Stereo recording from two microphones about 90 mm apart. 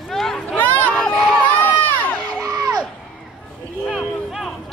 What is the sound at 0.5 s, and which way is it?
Crowd, 20° left (ahead or behind).